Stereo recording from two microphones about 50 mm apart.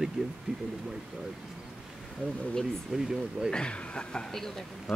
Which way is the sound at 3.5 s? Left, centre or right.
Centre.